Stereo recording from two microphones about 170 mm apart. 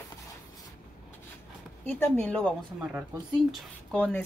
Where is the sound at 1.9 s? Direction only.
10° left (ahead or behind).